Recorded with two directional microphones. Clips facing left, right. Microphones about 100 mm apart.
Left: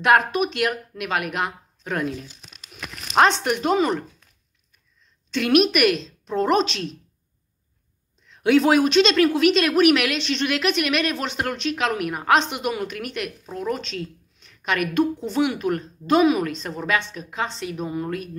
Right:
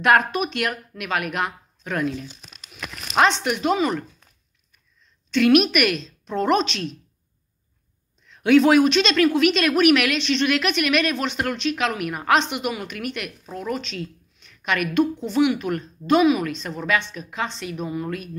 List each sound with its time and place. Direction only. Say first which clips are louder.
0.0 s speech: even; 25° left (ahead or behind)
2.7 s speech: left 2 dB; 40° left (ahead or behind)
5.3 s speech: right 2 dB; 30° left (ahead or behind)
8.4 s a woman's voice: right 2 dB; 25° left (ahead or behind)
14.4 s a sound: even; 30° left (ahead or behind)
15.2 s a woman's voice: right 2 dB; 35° left (ahead or behind)